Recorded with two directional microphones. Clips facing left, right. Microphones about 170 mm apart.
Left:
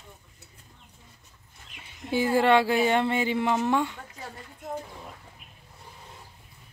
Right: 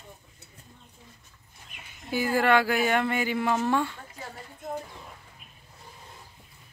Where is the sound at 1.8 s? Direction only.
25° left (ahead or behind).